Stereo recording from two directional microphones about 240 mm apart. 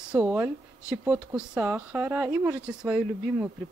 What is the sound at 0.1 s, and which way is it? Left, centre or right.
Speech, centre.